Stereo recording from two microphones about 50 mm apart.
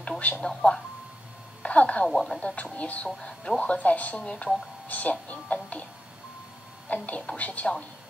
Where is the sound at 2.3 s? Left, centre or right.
Left.